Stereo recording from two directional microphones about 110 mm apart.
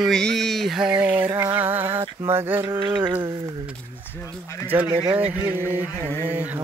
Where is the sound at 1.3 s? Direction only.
20° right (ahead or behind).